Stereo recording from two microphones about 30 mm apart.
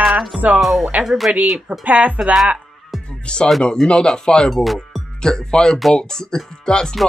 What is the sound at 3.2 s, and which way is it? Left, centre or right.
Speech, left.